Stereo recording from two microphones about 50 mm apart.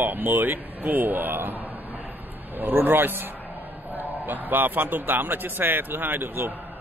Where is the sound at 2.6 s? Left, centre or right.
Right.